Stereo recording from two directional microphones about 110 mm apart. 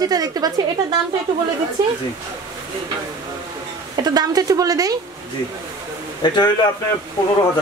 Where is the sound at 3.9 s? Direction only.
35° right (ahead or behind).